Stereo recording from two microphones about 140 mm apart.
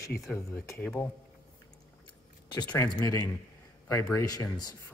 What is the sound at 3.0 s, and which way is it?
Speech, 20° left (ahead or behind).